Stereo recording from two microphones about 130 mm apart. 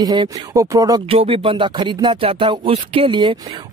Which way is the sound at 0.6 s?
25° right (ahead or behind).